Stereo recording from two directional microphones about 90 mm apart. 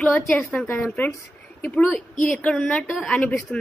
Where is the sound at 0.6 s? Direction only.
25° left (ahead or behind).